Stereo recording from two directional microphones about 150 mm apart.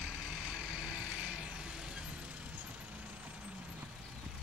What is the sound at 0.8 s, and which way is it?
Vehicle, 10° right (ahead or behind).